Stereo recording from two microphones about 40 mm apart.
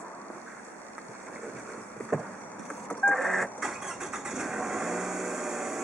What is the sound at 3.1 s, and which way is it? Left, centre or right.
Printer, centre.